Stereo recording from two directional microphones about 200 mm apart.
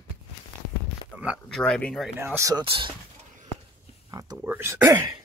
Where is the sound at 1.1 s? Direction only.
5° right (ahead or behind).